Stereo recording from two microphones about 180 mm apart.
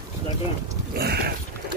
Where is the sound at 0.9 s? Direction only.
60° right (ahead or behind).